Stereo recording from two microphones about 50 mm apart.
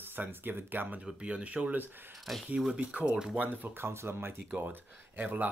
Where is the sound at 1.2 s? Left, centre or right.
Right.